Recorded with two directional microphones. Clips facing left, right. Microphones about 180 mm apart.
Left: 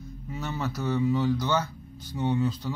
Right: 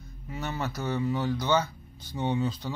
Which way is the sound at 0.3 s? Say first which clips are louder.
Left 1 dB; 5° right (ahead or behind).